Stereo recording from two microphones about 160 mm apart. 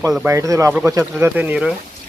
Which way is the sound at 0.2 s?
20° right (ahead or behind).